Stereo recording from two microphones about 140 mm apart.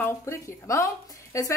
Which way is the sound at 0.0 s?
20° left (ahead or behind).